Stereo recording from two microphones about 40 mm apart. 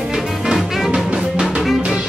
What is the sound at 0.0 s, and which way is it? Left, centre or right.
Music, centre.